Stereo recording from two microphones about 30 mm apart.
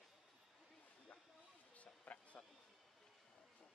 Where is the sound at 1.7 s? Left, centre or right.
Left.